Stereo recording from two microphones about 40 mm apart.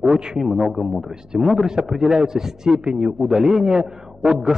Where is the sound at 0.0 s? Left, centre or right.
Centre.